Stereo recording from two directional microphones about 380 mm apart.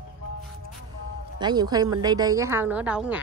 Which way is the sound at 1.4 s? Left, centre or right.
Centre.